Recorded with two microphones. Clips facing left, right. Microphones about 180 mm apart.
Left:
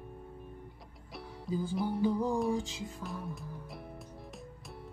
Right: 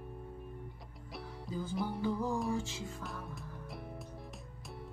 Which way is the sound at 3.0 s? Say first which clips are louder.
Left 4 dB; centre (ahead or behind).